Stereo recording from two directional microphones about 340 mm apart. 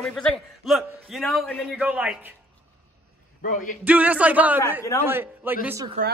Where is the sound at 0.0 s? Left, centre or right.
Centre.